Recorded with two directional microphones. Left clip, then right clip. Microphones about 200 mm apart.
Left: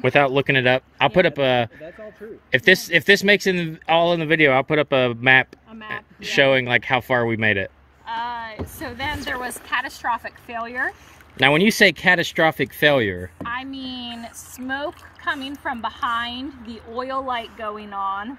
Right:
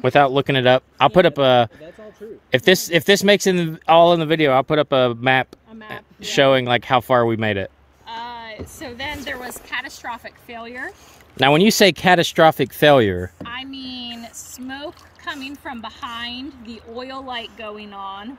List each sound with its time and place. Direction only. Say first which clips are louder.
0.0 s speech: right 2 dB; 20° right (ahead or behind)
8.1 s a sound: left 4 dB; 5° right (ahead or behind)
8.7 s a woman's voice: left 2 dB; 5° right (ahead or behind)
11.3 s speech: right 2 dB; 30° right (ahead or behind)
13.4 s a woman's voice: left 2 dB; 5° right (ahead or behind)